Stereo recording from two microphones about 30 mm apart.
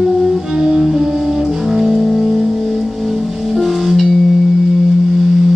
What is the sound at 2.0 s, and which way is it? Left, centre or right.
Music, centre.